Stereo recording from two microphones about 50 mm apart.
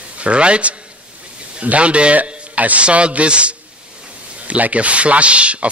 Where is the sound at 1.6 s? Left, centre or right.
Right.